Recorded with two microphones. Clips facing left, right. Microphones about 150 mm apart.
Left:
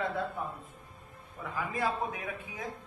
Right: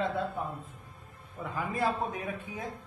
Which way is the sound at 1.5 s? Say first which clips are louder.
Right 2 dB; 30° right (ahead or behind).